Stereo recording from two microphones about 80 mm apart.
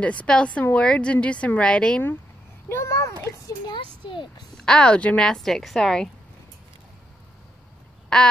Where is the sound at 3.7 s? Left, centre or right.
Left.